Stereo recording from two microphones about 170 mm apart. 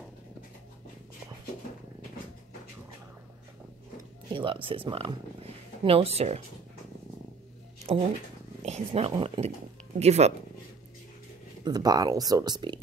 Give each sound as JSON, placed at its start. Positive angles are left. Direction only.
{"t": 4.3, "sound": "speech", "side_deg": -30}
{"t": 8.6, "sound": "speech", "side_deg": -40}
{"t": 11.6, "sound": "speech", "side_deg": -25}